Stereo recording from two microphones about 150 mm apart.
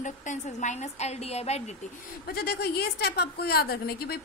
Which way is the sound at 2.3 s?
90° left.